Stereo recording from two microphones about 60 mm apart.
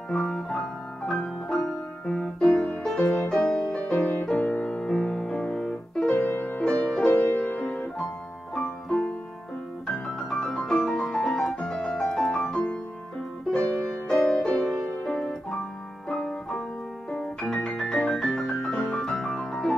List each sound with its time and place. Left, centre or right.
0.1 s piano: centre
2.0 s music: centre
7.3 s music: left
9.8 s piano: centre
11.2 s music: centre
17.1 s piano: centre